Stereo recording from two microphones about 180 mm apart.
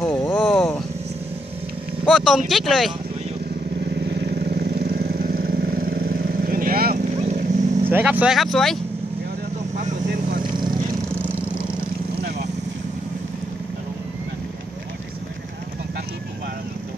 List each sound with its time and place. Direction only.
0.0 s a sound: 15° left (ahead or behind)
0.6 s vehicle: 10° left (ahead or behind)
2.0 s speech: centre (ahead or behind)
4.1 s vehicle: 60° right (ahead or behind)
7.2 s vehicle: 40° right (ahead or behind)
7.9 s speech: 10° right (ahead or behind)
10.4 s vehicle: 25° right (ahead or behind)